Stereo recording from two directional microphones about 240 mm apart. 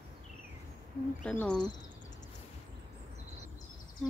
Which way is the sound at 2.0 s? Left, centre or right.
Left.